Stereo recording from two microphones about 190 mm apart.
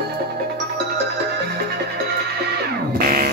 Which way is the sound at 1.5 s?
60° right (ahead or behind).